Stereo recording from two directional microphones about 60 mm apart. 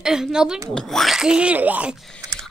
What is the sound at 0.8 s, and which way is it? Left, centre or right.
Speech, centre.